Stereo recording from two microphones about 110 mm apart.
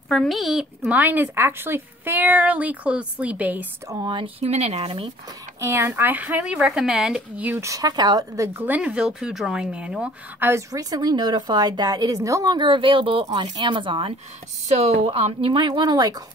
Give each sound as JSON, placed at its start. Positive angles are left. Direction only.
{"t": 0.1, "sound": "a woman's voice", "side_deg": 0}
{"t": 3.9, "sound": "speech", "side_deg": -45}
{"t": 4.4, "sound": "speech", "side_deg": -70}
{"t": 5.6, "sound": "a woman's voice", "side_deg": -25}
{"t": 7.6, "sound": "a woman's voice", "side_deg": -35}
{"t": 8.5, "sound": "a woman's voice", "side_deg": -15}
{"t": 10.5, "sound": "a woman's voice", "side_deg": -35}
{"t": 12.5, "sound": "speech", "side_deg": -45}
{"t": 13.2, "sound": "speech", "side_deg": -40}
{"t": 14.8, "sound": "speech", "side_deg": -60}